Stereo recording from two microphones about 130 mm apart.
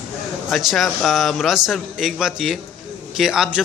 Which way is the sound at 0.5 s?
Centre (ahead or behind).